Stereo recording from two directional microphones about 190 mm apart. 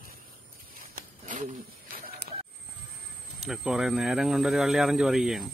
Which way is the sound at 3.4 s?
Centre (ahead or behind).